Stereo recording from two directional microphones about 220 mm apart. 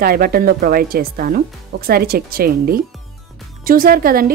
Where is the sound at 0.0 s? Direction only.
40° right (ahead or behind).